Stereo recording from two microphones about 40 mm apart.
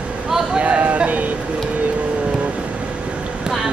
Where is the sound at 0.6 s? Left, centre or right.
Right.